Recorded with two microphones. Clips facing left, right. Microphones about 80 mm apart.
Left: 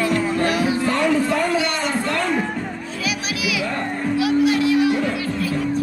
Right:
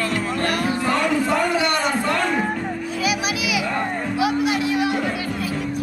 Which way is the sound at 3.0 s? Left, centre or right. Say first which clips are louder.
Right 1 dB; centre.